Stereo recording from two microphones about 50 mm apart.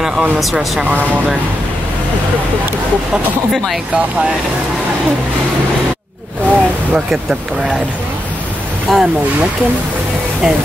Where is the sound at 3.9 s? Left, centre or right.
Centre.